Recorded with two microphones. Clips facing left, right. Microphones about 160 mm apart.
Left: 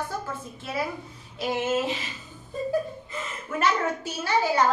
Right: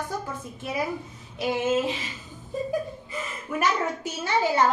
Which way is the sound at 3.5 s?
20° right (ahead or behind).